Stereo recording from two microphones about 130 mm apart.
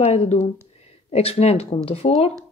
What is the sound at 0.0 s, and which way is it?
Speech, 50° left (ahead or behind).